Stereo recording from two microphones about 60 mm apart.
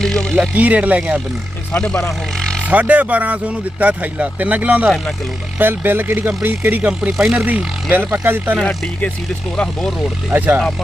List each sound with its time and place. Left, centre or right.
0.0 s speech: centre
0.6 s speech: right
1.8 s speech: centre
2.6 s speech: right
6.9 s speech: centre
7.4 s speech: right
8.6 s speech: centre
10.3 s speech: right